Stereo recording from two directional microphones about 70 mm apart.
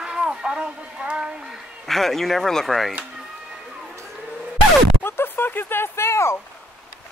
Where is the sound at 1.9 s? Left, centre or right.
Centre.